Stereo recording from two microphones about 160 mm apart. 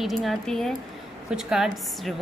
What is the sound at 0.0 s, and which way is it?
Speech, centre (ahead or behind).